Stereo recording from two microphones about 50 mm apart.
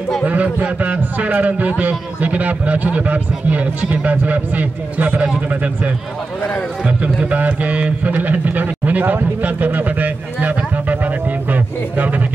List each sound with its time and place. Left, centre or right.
0.3 s a man's voice: right
7.0 s a man's voice: right
11.5 s a sound: right